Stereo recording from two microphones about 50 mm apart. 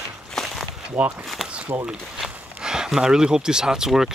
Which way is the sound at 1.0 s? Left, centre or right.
Right.